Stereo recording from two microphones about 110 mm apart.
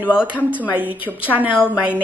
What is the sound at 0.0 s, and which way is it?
A woman's voice, 10° right (ahead or behind).